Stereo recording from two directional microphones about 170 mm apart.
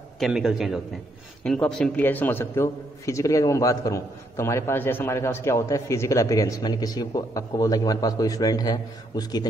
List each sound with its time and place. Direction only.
0.2 s a man's voice: centre (ahead or behind); by 9.5 s 25° left (ahead or behind)